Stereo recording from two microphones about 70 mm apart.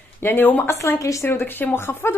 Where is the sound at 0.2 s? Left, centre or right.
Left.